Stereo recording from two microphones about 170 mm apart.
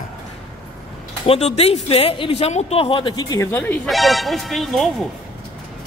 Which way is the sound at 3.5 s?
10° left (ahead or behind).